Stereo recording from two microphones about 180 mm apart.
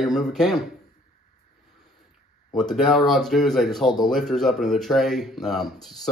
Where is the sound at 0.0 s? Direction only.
Centre (ahead or behind).